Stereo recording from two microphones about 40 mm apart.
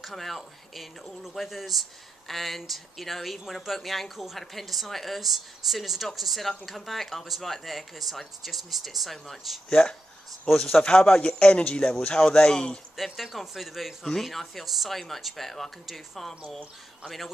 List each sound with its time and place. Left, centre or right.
0.0 s speech: centre
1.4 s speech: centre
10.5 s speech: left
12.9 s speech: centre
14.0 s speech: centre